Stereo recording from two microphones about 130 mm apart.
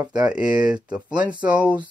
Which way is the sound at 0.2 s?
10° right (ahead or behind).